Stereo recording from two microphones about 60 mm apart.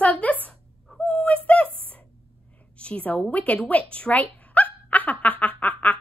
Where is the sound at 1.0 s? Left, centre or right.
Left.